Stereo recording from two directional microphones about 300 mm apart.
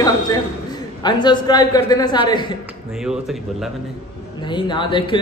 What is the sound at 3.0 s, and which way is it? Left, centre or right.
Speech, centre.